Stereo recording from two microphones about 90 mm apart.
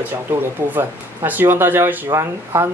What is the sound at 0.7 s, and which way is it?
Speech, 20° right (ahead or behind).